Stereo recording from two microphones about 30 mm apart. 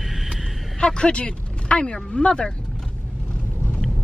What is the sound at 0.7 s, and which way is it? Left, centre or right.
Speech, left.